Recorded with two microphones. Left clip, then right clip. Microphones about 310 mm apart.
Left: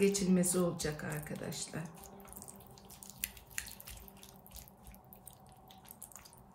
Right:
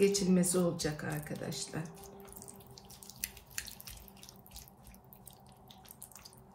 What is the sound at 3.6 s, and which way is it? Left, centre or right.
Drip, centre.